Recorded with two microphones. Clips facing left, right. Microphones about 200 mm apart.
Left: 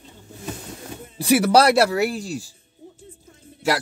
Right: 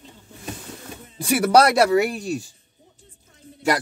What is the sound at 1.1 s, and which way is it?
Speech, 5° left (ahead or behind).